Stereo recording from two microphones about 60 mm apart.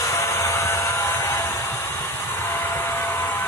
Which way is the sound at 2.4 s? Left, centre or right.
Left.